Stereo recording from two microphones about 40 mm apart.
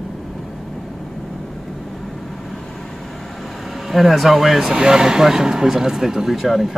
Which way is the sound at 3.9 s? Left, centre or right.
Centre.